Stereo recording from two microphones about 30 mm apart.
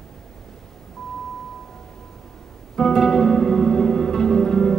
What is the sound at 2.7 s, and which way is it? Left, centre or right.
Music, left.